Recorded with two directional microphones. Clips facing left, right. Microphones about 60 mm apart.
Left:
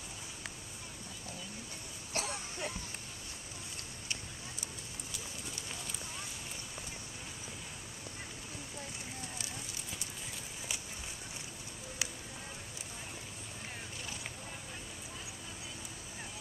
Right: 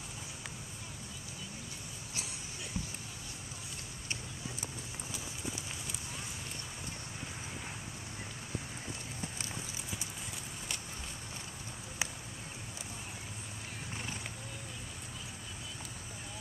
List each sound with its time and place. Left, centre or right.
2.1 s cough: left
12.0 s music: right